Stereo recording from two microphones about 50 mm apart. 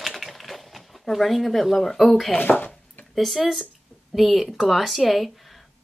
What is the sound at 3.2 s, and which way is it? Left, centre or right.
Speech, centre.